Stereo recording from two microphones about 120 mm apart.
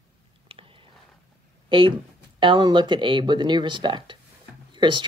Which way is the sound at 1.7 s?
45° right (ahead or behind).